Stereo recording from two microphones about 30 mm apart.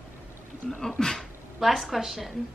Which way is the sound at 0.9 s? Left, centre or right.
Centre.